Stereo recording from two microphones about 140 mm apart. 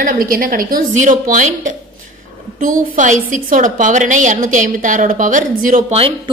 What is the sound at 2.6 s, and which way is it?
A woman's voice, 70° right (ahead or behind).